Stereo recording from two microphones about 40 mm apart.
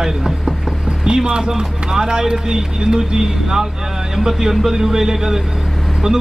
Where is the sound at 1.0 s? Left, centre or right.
Centre.